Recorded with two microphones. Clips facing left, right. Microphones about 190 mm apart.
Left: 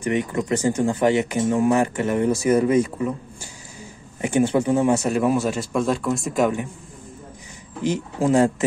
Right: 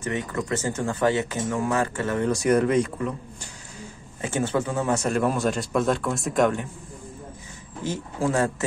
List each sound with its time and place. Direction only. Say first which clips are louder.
0.0 s speech: left 5 dB; 15° left (ahead or behind)
2.3 s speech: left 1 dB; 5° left (ahead or behind)
4.2 s speech: left 6 dB; 15° left (ahead or behind)
7.8 s speech: left 5 dB; 15° left (ahead or behind)